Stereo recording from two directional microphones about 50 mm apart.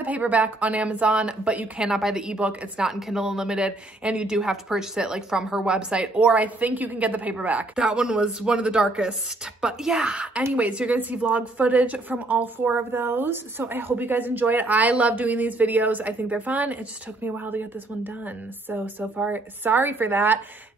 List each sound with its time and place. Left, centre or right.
0.0 s a woman's voice: right
1.9 s speech: centre
2.9 s speech: centre
3.6 s a woman's voice: right
4.4 s a woman's voice: centre; by 7.8 s right
7.8 s speech: centre
10.1 s a woman's voice: right
12.9 s a woman's voice: right